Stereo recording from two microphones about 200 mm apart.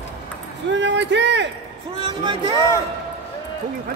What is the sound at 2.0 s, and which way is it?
Speech, 25° right (ahead or behind).